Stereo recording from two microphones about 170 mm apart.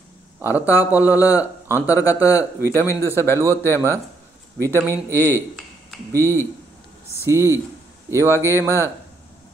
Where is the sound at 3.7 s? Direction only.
15° right (ahead or behind).